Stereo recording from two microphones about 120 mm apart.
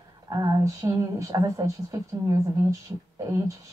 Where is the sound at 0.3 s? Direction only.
30° right (ahead or behind).